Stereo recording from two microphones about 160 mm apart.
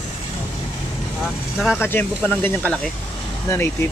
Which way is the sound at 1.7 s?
15° left (ahead or behind).